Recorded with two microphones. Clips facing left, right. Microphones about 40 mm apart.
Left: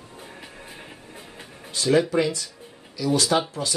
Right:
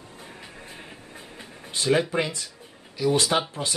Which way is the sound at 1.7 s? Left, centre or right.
Right.